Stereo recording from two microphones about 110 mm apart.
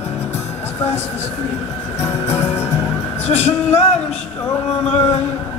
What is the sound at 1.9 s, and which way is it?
Music, 20° left (ahead or behind).